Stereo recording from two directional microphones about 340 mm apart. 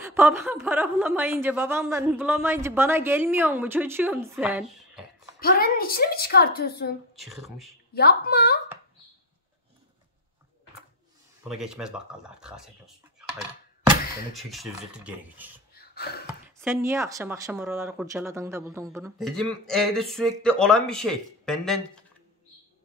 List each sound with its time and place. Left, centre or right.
0.0 s a woman's voice: centre
5.4 s a woman's voice: left
7.2 s speech: centre
7.9 s a woman's voice: left
11.4 s speech: centre
14.3 s speech: centre
15.9 s a sound: left
16.6 s speech: centre